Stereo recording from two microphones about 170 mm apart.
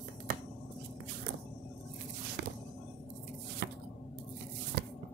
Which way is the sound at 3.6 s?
90° right.